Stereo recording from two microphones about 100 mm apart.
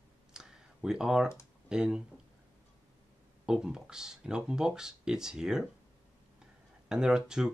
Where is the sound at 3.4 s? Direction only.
5° right (ahead or behind).